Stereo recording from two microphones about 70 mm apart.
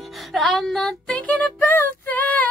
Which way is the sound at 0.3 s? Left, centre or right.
Centre.